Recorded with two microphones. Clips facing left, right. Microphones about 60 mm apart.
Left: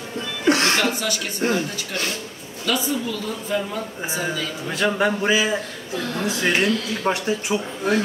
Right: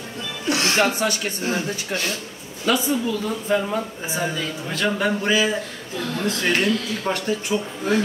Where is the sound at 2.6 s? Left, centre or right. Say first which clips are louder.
Right 2 dB; right.